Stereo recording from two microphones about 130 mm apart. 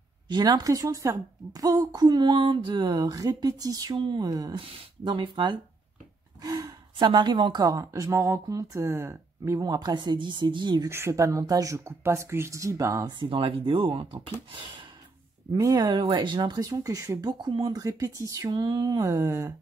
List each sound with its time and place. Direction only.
0.3 s a woman's voice: 30° right (ahead or behind)
10.9 s speech: 20° right (ahead or behind)
13.2 s a woman's voice: 40° right (ahead or behind)
15.5 s a woman's voice: 30° right (ahead or behind)
17.3 s speech: 35° right (ahead or behind)